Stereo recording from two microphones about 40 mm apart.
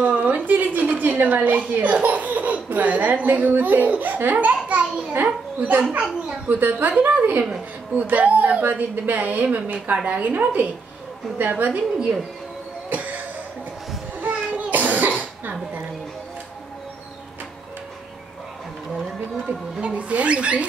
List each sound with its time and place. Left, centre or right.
0.0 s a woman's voice: right
4.2 s a sound: right
5.1 s a child's voice: right
7.9 s a woman's voice: right
12.9 s cough: right
14.2 s cough: right
19.8 s speech: right